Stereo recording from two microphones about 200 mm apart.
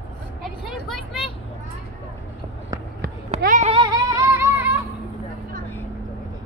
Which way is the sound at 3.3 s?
40° right (ahead or behind).